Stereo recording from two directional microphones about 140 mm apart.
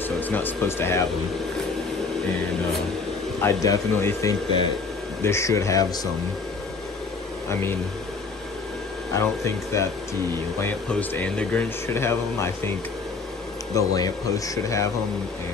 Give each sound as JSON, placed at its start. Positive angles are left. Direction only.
{"t": 0.3, "sound": "speech", "side_deg": 15}
{"t": 3.3, "sound": "speech", "side_deg": 20}
{"t": 9.1, "sound": "speech", "side_deg": 20}
{"t": 13.7, "sound": "speech", "side_deg": 25}